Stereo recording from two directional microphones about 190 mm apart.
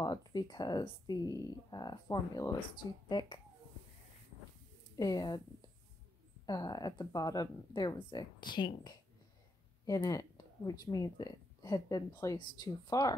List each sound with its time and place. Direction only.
0.0 s speech: 20° left (ahead or behind)
4.9 s speech: 20° left (ahead or behind)
6.4 s speech: 20° left (ahead or behind)